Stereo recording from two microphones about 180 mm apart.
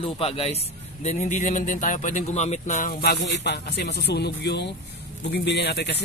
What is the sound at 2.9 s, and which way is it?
Speech, 65° left (ahead or behind).